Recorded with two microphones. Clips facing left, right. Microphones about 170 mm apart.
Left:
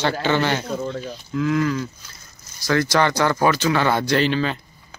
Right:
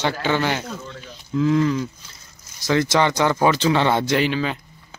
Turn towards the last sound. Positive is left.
turn(degrees=-10)  # may be behind; listen again after turning